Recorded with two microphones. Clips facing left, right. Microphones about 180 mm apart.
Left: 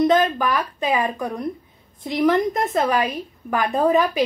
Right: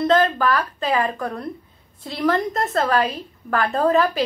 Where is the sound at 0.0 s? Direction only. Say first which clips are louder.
Even; 15° left (ahead or behind).